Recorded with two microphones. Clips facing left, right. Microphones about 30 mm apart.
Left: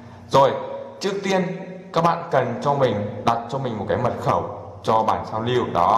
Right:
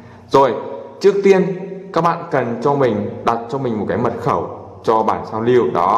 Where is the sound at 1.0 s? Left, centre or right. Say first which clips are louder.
Right 11 dB; centre.